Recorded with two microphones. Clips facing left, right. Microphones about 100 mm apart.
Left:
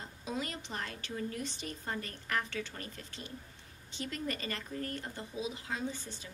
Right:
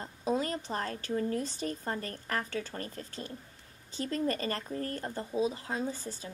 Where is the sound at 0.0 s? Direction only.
40° right (ahead or behind).